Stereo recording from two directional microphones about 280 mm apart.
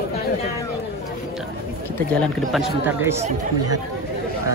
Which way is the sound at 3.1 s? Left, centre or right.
Right.